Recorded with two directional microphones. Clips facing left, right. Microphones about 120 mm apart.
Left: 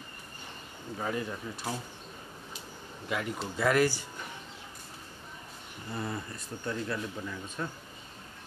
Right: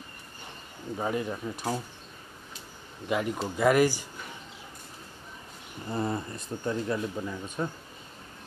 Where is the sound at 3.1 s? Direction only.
20° right (ahead or behind).